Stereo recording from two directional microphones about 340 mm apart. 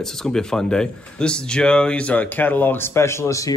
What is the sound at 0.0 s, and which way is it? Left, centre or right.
Speech, centre.